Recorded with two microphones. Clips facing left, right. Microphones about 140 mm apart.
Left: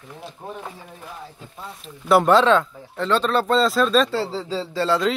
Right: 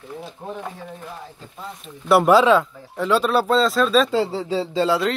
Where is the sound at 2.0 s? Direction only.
5° right (ahead or behind).